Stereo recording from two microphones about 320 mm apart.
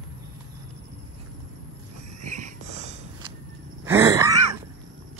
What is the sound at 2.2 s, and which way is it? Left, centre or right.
Snort, right.